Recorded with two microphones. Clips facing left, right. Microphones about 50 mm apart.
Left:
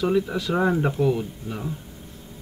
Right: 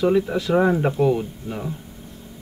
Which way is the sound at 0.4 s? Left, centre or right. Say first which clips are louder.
Right 5 dB; right.